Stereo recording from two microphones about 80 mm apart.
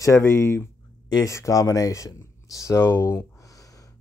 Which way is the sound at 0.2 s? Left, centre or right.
Left.